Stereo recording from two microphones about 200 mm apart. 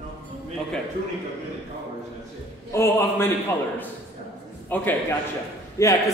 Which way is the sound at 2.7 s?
15° left (ahead or behind).